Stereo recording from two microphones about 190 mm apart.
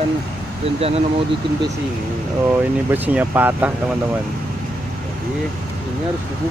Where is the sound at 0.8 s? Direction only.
30° right (ahead or behind).